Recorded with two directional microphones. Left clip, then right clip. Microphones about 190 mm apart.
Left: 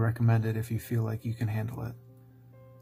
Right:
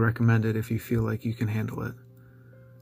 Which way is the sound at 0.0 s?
10° right (ahead or behind).